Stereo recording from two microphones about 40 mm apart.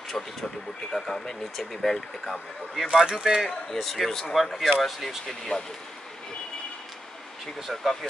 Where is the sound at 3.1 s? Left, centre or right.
Centre.